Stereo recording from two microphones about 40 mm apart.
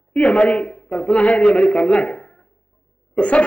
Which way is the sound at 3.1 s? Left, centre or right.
Left.